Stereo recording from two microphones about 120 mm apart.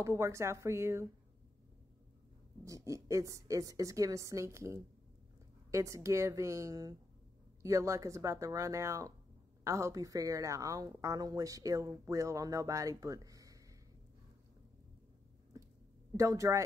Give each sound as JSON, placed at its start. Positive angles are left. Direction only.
{"t": 0.0, "sound": "speech", "side_deg": -25}
{"t": 2.6, "sound": "speech", "side_deg": -25}
{"t": 16.2, "sound": "speech", "side_deg": -25}